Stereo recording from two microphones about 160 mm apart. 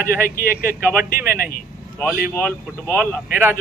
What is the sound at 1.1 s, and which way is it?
Speech, 65° left (ahead or behind).